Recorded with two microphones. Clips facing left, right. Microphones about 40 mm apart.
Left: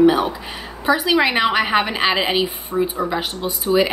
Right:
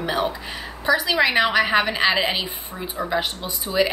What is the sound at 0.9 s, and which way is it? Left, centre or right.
A woman's voice, centre.